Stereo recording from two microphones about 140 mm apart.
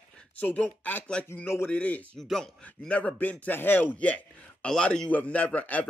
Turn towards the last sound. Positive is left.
turn(degrees=10)  # may be behind; listen again after turning